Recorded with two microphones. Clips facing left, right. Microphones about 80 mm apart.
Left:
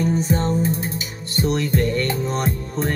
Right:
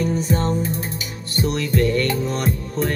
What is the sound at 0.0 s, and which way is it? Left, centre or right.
Music, left.